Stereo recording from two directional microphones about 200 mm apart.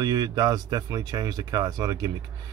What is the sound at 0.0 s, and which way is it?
Speech, 20° right (ahead or behind).